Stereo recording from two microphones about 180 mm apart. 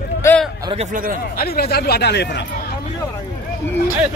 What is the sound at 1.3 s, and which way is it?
Speech, 60° left (ahead or behind).